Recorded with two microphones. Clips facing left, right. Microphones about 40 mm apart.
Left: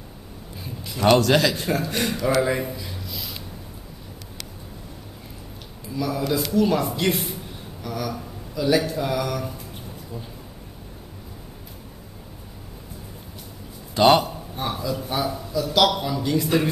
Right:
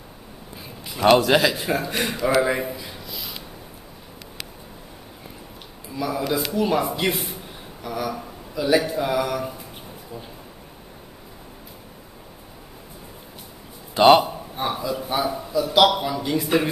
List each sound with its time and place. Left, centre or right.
0.8 s a man's voice: centre
5.9 s a man's voice: centre
7.0 s a man's voice: centre
13.9 s a man's voice: centre